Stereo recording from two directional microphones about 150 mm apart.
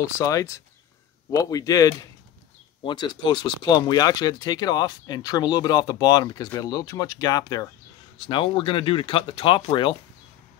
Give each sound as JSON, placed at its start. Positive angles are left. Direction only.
{"t": 0.0, "sound": "speech", "side_deg": 20}